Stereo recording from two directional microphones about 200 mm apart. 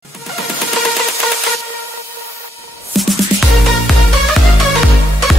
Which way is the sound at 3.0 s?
Centre (ahead or behind).